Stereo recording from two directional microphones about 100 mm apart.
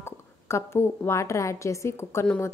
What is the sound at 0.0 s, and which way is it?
A woman's voice, 25° left (ahead or behind).